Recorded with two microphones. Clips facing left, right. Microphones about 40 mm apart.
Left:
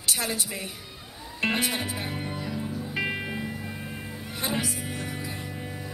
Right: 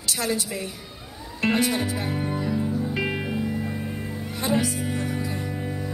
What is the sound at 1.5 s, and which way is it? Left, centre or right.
Speech, centre.